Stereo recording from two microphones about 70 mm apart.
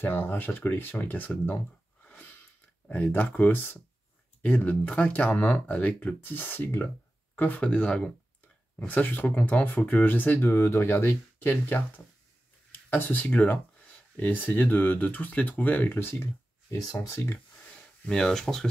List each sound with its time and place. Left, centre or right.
0.0 s speech: left
2.0 s a sound: left
3.2 s speech: left
7.6 s speech: centre; by 16.3 s left
16.7 s speech: left
18.0 s speech: centre